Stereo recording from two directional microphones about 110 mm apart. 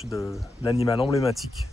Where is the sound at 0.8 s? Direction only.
55° left (ahead or behind).